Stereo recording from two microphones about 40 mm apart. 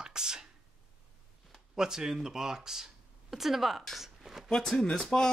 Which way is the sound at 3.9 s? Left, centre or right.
Centre.